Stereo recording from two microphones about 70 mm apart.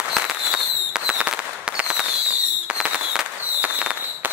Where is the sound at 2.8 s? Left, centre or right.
Centre.